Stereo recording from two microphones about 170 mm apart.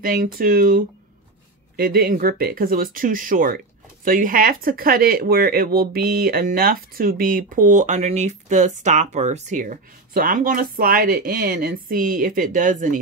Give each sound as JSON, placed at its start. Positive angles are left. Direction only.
{"t": 0.0, "sound": "speech", "side_deg": -55}